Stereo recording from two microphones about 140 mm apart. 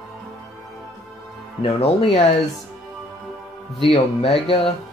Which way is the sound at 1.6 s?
40° left (ahead or behind).